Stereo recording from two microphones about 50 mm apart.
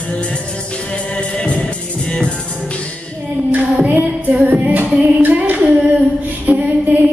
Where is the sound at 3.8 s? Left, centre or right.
Right.